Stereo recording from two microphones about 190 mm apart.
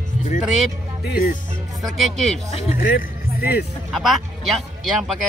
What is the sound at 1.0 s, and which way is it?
Speech, 55° left (ahead or behind).